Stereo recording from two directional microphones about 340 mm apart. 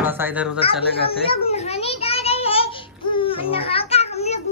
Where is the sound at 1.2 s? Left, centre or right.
Centre.